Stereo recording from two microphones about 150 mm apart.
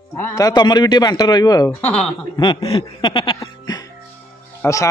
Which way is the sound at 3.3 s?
25° left (ahead or behind).